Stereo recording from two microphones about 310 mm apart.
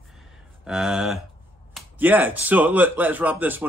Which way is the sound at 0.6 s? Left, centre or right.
Centre.